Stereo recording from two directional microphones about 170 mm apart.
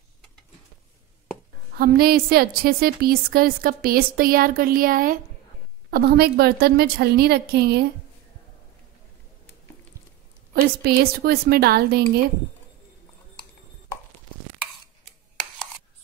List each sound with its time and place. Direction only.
1.8 s a woman's voice: 65° right (ahead or behind)
10.5 s a woman's voice: 65° right (ahead or behind)